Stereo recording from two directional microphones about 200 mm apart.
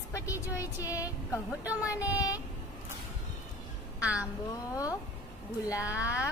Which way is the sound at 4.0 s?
5° right (ahead or behind).